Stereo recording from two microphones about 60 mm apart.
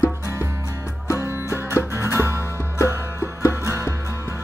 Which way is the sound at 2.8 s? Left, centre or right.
Right.